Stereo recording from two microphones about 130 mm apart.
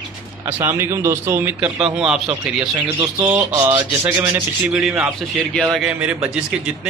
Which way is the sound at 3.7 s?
15° right (ahead or behind).